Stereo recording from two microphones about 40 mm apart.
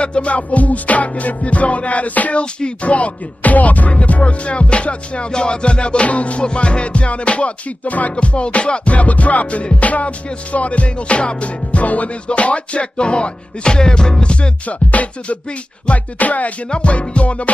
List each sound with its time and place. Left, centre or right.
0.0 s music: left
2.4 s music: left
16.7 s music: left